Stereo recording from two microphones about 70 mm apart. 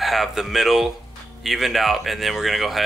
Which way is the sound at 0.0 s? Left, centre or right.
Centre.